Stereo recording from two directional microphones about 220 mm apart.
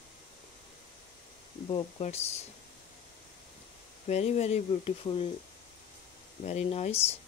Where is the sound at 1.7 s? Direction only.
30° left (ahead or behind).